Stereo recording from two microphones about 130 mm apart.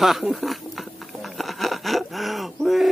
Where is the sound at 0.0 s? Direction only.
Centre (ahead or behind).